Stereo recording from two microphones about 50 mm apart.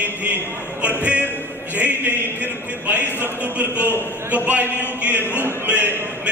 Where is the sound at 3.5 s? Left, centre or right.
Right.